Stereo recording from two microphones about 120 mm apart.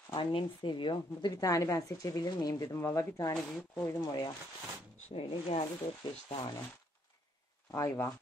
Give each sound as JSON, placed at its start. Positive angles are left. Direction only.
{"t": 0.1, "sound": "a woman's voice", "side_deg": 45}
{"t": 3.3, "sound": "speech", "side_deg": 5}
{"t": 3.8, "sound": "a woman's voice", "side_deg": 30}
{"t": 5.1, "sound": "speech", "side_deg": 60}
{"t": 7.7, "sound": "speech", "side_deg": 25}